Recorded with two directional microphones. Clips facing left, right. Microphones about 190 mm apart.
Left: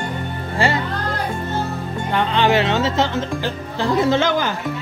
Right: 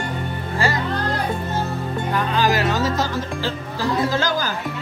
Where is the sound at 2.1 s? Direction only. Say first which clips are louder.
Left 4 dB; 25° left (ahead or behind).